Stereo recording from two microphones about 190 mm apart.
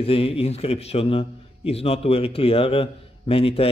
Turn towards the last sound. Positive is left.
turn(degrees=30)  # may be behind; listen again after turning